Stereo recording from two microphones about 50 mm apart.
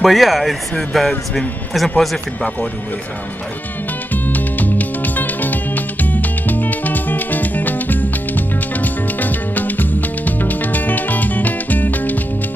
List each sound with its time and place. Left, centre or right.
0.0 s speech: centre
4.1 s music: left